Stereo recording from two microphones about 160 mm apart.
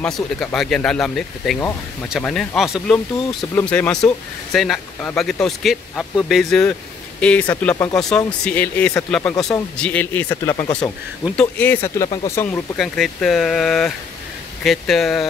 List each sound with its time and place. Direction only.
0.0 s speech: 5° left (ahead or behind)
3.5 s speech: 10° left (ahead or behind)
12.7 s speech: centre (ahead or behind)